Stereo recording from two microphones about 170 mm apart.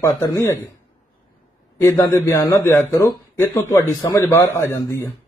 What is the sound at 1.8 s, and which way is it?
A man's voice, 20° left (ahead or behind).